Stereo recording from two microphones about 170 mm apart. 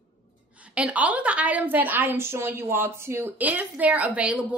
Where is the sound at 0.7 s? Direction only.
10° right (ahead or behind).